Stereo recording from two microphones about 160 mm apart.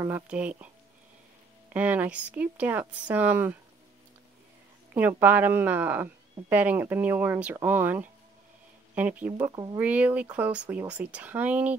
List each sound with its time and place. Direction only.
0.0 s speech: 10° right (ahead or behind)
1.7 s speech: 10° right (ahead or behind)
4.9 s speech: 10° right (ahead or behind)